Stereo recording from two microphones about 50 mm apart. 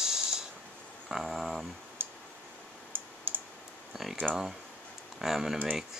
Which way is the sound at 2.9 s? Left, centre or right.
Right.